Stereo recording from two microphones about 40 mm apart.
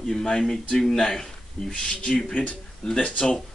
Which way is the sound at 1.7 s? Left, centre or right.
Left.